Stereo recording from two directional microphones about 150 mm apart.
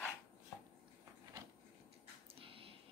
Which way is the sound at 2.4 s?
40° right (ahead or behind).